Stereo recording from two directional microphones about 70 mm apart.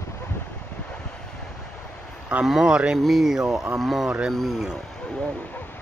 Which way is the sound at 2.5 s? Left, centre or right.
Centre.